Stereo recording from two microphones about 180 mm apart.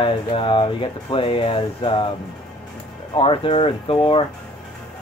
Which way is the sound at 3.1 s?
30° left (ahead or behind).